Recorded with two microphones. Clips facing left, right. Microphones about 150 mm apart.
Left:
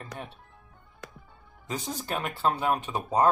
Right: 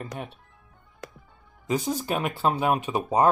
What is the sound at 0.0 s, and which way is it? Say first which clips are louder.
Speech: right 4 dB; 20° right (ahead or behind).